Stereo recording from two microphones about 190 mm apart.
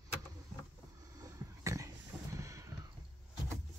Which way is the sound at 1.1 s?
15° right (ahead or behind).